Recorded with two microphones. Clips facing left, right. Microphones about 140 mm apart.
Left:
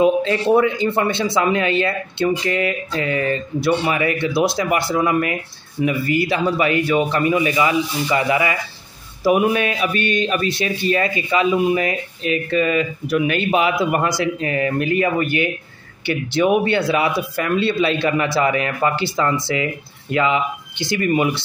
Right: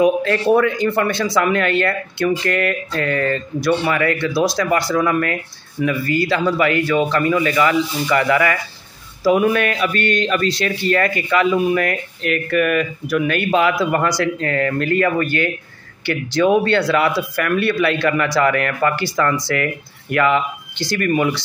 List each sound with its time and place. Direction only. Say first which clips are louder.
0.0 s a man's voice: right 1 dB; 20° left (ahead or behind)
12.5 s speech: right 1 dB; 65° right (ahead or behind)
13.0 s a man's voice: even; 20° left (ahead or behind)